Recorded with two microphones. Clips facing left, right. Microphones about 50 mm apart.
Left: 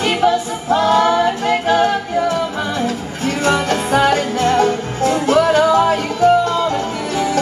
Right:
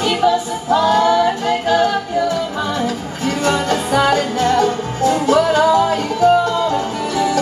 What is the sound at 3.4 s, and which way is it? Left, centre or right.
Music, left.